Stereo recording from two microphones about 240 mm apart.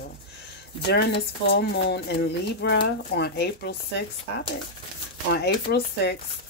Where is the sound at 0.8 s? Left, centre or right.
Left.